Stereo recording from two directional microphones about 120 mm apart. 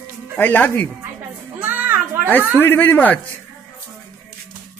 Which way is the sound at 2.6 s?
15° left (ahead or behind).